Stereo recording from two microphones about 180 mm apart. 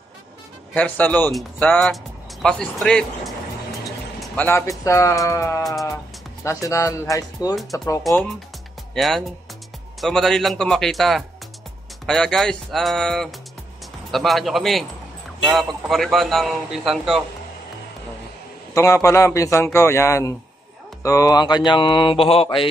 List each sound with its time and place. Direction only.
0.7 s a man's voice: 10° left (ahead or behind)
5.6 s a man's voice: centre (ahead or behind)
6.4 s a man's voice: 15° left (ahead or behind)
8.9 s a man's voice: centre (ahead or behind)
18.8 s a man's voice: 15° left (ahead or behind)